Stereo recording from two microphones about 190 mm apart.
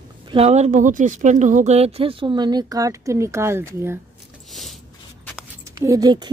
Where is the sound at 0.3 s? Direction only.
35° right (ahead or behind); by 4.0 s 10° right (ahead or behind).